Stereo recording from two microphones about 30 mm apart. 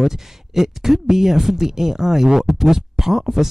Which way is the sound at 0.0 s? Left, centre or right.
Centre.